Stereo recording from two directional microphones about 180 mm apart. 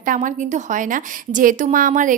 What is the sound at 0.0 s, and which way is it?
A woman's voice, 45° right (ahead or behind).